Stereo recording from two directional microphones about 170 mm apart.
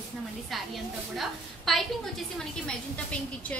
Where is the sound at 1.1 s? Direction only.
Centre (ahead or behind).